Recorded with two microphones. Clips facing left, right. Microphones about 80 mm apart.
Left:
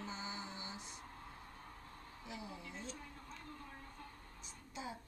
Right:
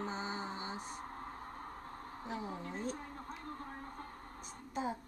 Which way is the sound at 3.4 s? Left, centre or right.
Right.